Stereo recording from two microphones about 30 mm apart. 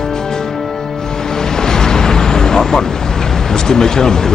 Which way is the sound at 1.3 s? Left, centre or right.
Left.